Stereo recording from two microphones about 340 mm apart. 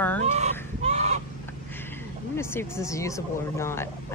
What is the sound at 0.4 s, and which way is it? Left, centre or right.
Fowl, centre.